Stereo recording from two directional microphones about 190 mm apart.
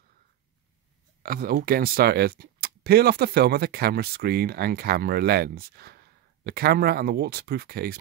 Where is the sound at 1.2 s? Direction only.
50° right (ahead or behind).